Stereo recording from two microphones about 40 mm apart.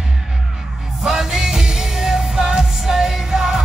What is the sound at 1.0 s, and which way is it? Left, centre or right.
Music, centre.